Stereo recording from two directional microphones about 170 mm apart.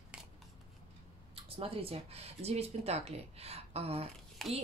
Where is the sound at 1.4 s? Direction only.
35° right (ahead or behind).